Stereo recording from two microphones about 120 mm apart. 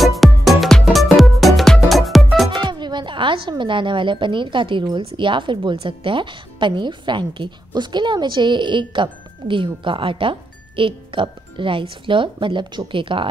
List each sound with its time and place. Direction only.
0.0 s music: centre (ahead or behind)
2.7 s a woman's voice: 40° right (ahead or behind)